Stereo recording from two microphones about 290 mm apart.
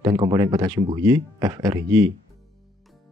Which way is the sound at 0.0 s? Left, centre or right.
Centre.